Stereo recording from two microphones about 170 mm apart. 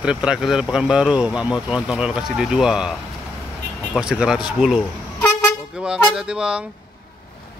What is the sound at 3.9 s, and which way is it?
Speech, 5° right (ahead or behind).